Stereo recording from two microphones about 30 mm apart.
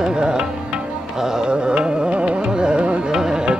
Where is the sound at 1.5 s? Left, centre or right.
Right.